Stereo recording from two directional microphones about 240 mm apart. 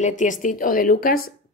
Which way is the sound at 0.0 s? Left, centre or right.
Left.